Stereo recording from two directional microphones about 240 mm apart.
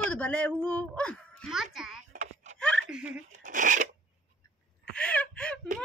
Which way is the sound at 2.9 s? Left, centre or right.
Centre.